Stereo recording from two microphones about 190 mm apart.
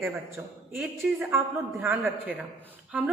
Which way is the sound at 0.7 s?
15° right (ahead or behind).